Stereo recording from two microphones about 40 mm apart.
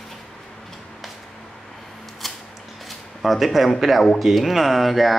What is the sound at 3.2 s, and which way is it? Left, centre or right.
Speech, centre.